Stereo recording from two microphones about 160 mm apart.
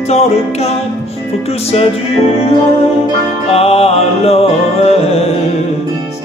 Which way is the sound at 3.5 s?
40° left (ahead or behind).